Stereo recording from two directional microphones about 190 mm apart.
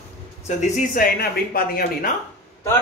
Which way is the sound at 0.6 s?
45° left (ahead or behind).